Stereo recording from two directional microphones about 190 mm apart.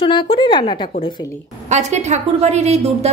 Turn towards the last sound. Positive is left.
turn(degrees=-35)  # may be behind; listen again after turning